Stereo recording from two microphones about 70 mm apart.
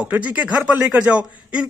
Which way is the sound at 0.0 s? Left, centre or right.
Right.